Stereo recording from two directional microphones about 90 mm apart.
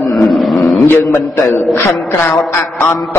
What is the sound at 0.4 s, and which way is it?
Roaring cats, centre (ahead or behind).